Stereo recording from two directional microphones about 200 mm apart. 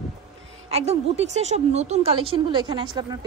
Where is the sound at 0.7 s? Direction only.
30° right (ahead or behind).